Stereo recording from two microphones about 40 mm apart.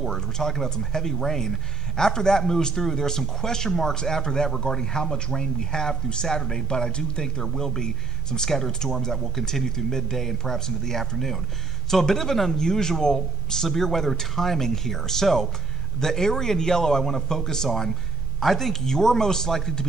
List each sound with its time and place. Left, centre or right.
0.0 s speech: centre